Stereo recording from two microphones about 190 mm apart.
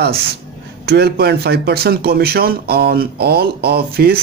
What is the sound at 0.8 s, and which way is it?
Speech, 60° right (ahead or behind).